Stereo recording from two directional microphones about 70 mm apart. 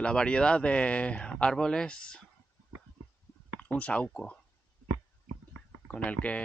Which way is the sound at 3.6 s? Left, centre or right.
Centre.